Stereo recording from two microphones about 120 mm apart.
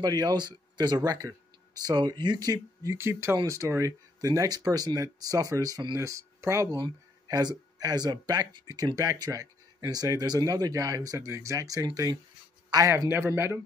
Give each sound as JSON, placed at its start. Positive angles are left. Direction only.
{"t": 0.0, "sound": "speech", "side_deg": -35}